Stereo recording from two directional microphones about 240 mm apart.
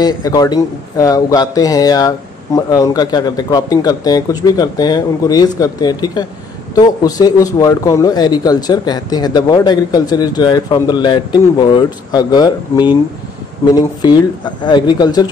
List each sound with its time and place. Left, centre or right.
0.0 s speech: centre